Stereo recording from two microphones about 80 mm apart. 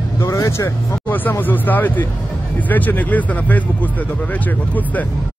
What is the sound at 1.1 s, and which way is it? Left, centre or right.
Speech, left.